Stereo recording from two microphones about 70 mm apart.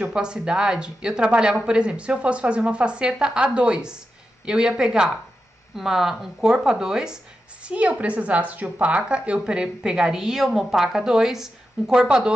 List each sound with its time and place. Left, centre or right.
0.0 s a woman's voice: centre